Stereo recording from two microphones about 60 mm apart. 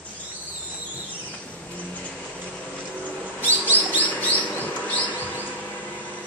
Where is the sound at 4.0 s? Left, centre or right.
Left.